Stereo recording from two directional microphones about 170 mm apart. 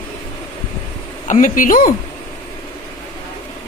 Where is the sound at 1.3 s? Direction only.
50° left (ahead or behind).